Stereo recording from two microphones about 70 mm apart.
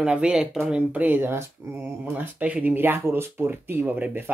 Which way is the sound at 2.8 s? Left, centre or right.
Right.